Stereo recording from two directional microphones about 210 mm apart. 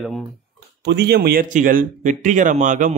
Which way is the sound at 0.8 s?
50° right (ahead or behind).